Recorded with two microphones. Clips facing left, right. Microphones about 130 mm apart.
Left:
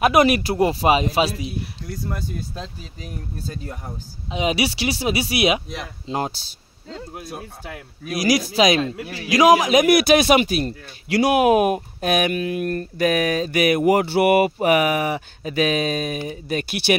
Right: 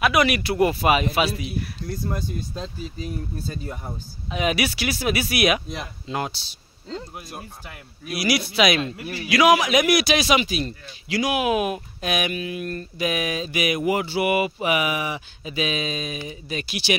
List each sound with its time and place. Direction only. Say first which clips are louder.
0.0 s a man's voice: left 4 dB; 40° left (ahead or behind)
4.3 s speech: left 2 dB; 25° left (ahead or behind)
8.1 s a man's voice: left 4 dB; 40° left (ahead or behind); by 16.9 s 55° left (ahead or behind)